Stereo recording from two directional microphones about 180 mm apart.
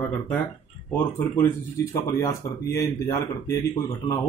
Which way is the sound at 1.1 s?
15° left (ahead or behind).